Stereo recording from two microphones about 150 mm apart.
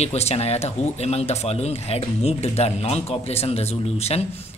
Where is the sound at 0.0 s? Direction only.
45° left (ahead or behind).